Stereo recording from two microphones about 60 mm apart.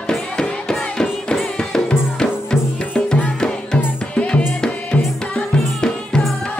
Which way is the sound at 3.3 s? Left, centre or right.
Centre.